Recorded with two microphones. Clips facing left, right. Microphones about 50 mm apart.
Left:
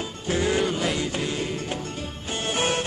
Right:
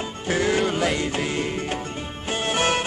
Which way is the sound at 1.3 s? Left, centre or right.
Right.